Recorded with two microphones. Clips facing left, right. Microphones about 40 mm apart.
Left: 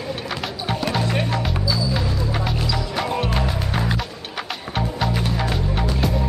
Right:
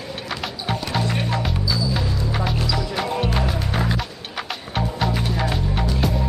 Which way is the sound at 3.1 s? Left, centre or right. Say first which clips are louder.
Left 1 dB; centre.